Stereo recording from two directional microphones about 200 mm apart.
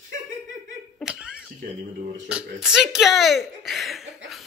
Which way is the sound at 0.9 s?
5° right (ahead or behind).